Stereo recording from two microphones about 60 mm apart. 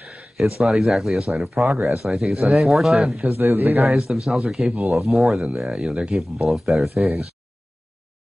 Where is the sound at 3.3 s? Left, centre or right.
Right.